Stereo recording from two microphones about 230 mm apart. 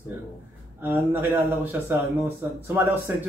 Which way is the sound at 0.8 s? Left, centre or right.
Centre.